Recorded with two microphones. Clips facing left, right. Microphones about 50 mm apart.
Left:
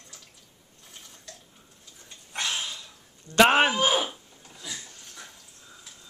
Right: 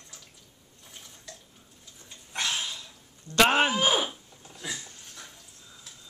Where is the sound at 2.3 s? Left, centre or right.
Centre.